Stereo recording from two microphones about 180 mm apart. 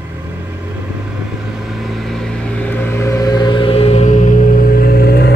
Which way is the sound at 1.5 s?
Centre (ahead or behind).